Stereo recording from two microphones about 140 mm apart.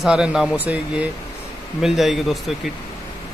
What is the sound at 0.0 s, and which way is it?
Speech, 5° right (ahead or behind).